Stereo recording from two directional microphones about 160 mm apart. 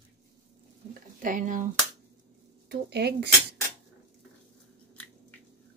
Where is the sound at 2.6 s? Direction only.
90° right.